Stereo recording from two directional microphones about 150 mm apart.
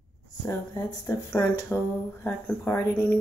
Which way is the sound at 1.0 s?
10° left (ahead or behind).